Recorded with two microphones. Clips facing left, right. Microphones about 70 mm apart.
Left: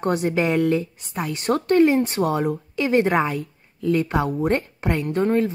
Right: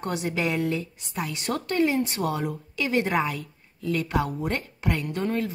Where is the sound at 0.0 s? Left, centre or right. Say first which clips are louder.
Left 6 dB; left.